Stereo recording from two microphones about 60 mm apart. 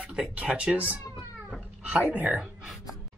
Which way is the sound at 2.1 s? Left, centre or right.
Right.